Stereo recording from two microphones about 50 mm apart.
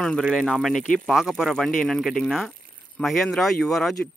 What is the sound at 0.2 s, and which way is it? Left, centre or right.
Speech, centre.